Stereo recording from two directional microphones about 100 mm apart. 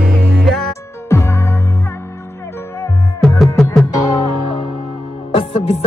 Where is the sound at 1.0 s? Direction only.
25° left (ahead or behind).